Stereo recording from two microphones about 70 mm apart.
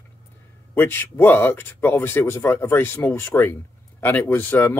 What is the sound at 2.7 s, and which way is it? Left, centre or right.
Speech, left.